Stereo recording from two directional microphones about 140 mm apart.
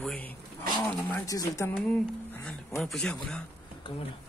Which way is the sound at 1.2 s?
25° left (ahead or behind).